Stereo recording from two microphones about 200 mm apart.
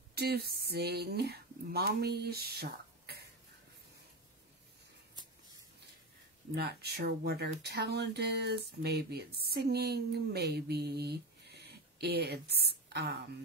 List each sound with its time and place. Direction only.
0.1 s speech: 50° right (ahead or behind)
6.5 s a woman's voice: 55° right (ahead or behind)